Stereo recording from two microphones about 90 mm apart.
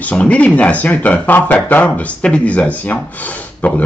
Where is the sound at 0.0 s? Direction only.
15° left (ahead or behind).